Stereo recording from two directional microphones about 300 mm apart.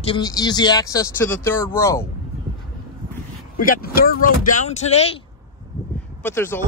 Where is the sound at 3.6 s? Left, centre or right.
Left.